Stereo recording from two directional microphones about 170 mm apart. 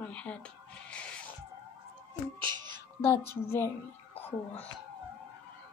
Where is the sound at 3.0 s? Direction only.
15° left (ahead or behind).